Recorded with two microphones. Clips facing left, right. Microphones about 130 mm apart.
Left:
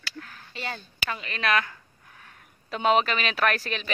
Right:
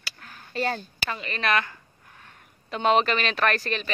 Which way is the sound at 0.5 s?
45° right (ahead or behind).